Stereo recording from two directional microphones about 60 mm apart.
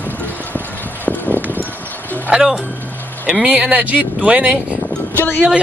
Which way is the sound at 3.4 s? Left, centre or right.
Right.